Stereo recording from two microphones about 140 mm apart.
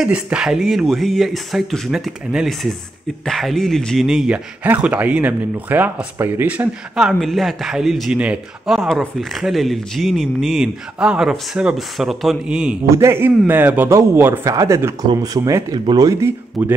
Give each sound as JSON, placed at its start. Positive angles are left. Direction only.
{"t": 0.0, "sound": "speech", "side_deg": -5}
{"t": 12.8, "sound": "speech", "side_deg": -20}